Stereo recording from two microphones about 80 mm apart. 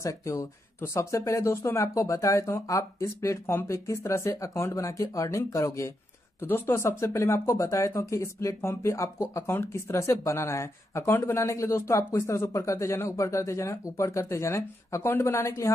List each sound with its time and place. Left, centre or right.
0.0 s speech: left
6.4 s speech: left